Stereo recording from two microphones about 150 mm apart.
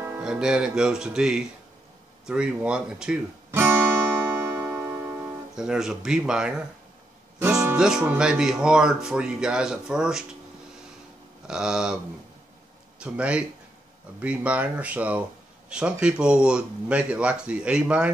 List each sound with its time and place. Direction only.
0.2 s speech: 5° right (ahead or behind)
4.3 s music: 15° right (ahead or behind)
5.6 s speech: 5° right (ahead or behind)
7.7 s speech: 5° right (ahead or behind)
11.4 s speech: 5° right (ahead or behind)
13.0 s speech: 10° right (ahead or behind)